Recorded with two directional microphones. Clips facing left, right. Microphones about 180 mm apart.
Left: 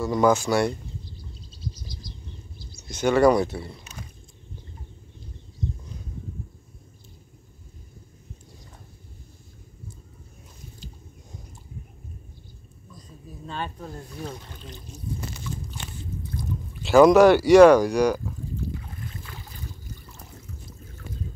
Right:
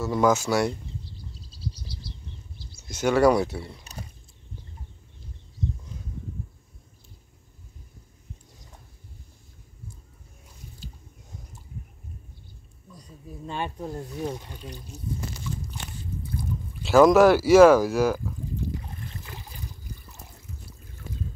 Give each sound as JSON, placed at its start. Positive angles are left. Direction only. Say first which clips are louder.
{"t": 0.0, "sound": "speech", "louder": "left 2 dB", "side_deg": -5}
{"t": 1.5, "sound": "bird", "louder": "even", "side_deg": -35}
{"t": 2.9, "sound": "speech", "louder": "left 1 dB", "side_deg": -5}
{"t": 3.9, "sound": "a sound", "louder": "right 1 dB", "side_deg": -35}
{"t": 13.5, "sound": "speech", "louder": "right 2 dB", "side_deg": -15}
{"t": 16.8, "sound": "speech", "louder": "left 2 dB", "side_deg": 0}